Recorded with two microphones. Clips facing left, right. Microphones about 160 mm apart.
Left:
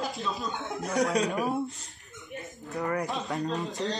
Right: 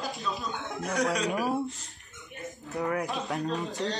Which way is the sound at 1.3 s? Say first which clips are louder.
Even; 5° right (ahead or behind).